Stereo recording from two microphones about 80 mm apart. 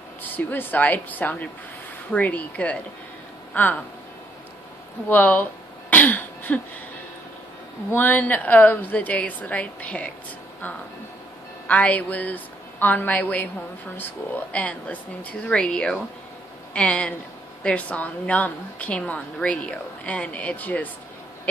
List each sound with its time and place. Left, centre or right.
0.2 s speech: left
5.1 s throat clearing: left
7.9 s speech: left
11.6 s a woman's voice: centre